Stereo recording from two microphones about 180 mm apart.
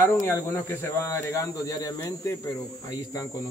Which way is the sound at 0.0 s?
15° left (ahead or behind).